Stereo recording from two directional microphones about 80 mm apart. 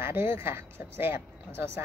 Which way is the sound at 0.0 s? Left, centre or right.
Right.